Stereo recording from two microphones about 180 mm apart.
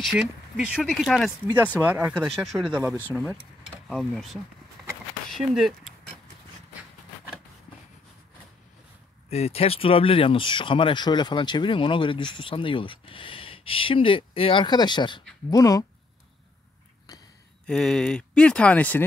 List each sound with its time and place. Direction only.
0.1 s speech: 5° right (ahead or behind)
3.8 s speech: centre (ahead or behind)
4.8 s a sound: centre (ahead or behind)
5.3 s speech: centre (ahead or behind)
9.3 s speech: 35° left (ahead or behind); by 15.8 s 20° left (ahead or behind)
17.6 s speech: 5° left (ahead or behind)